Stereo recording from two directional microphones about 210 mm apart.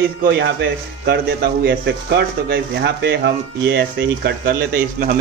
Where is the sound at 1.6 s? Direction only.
55° right (ahead or behind).